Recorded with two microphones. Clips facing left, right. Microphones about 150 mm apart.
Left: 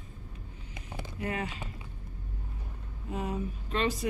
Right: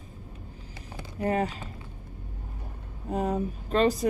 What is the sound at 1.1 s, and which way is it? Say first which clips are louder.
Speech: right 8 dB; 40° right (ahead or behind).